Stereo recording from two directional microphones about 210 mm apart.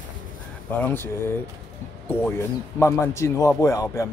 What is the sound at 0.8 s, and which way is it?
Speech, 10° left (ahead or behind).